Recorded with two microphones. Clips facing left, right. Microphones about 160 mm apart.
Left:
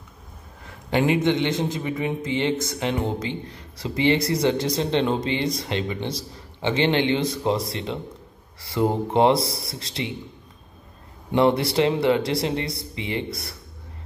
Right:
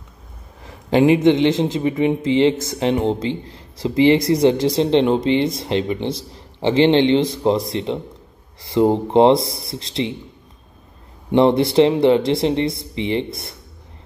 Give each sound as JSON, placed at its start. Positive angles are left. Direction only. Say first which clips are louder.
{"t": 0.9, "sound": "a man's voice", "louder": "right 7 dB", "side_deg": -25}
{"t": 11.3, "sound": "a man's voice", "louder": "right 6 dB", "side_deg": -25}